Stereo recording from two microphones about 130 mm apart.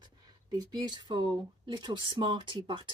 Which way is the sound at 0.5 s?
30° right (ahead or behind).